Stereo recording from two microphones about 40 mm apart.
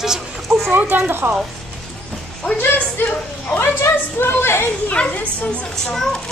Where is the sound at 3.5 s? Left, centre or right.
Left.